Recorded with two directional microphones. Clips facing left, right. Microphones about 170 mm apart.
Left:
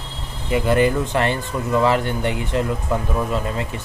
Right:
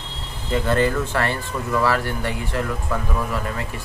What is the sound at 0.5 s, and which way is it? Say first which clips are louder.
Speech: left 3 dB; 15° left (ahead or behind).